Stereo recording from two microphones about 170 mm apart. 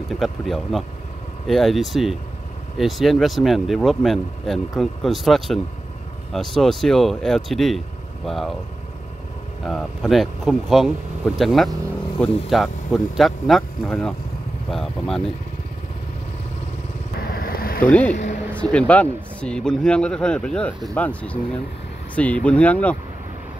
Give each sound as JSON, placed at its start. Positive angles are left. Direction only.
{"t": 0.1, "sound": "speech", "side_deg": 0}
{"t": 9.7, "sound": "speech", "side_deg": 0}
{"t": 17.3, "sound": "vehicle", "side_deg": 60}
{"t": 17.8, "sound": "speech", "side_deg": 5}